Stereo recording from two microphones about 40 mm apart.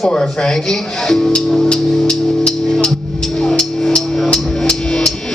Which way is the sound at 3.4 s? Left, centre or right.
Centre.